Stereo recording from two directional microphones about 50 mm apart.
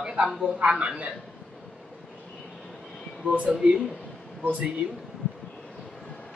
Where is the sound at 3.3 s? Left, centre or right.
Right.